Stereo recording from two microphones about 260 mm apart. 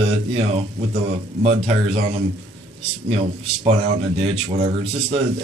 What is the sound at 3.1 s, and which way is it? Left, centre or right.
Speech, right.